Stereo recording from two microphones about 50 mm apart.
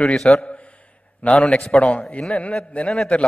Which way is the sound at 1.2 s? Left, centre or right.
Left.